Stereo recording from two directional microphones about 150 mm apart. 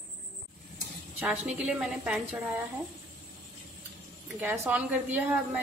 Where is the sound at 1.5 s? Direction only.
5° right (ahead or behind).